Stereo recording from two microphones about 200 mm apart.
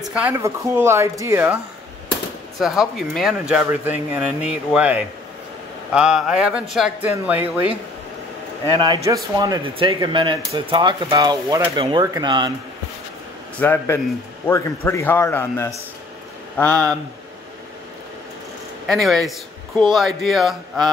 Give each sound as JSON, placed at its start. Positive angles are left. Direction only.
{"t": 0.1, "sound": "speech", "side_deg": -10}
{"t": 2.6, "sound": "speech", "side_deg": 0}
{"t": 8.6, "sound": "speech", "side_deg": -20}
{"t": 11.7, "sound": "speech", "side_deg": -25}
{"t": 13.6, "sound": "a man's voice", "side_deg": 10}
{"t": 18.9, "sound": "speech", "side_deg": 0}